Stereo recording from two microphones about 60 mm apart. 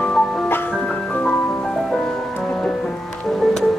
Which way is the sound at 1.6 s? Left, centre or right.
Centre.